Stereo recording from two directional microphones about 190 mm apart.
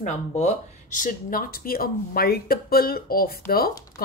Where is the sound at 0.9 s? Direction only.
45° left (ahead or behind).